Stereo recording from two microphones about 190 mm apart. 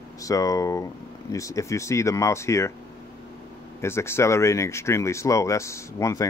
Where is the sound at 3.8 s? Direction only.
15° left (ahead or behind).